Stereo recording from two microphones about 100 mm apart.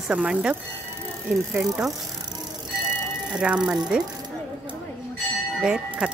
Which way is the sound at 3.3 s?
10° right (ahead or behind).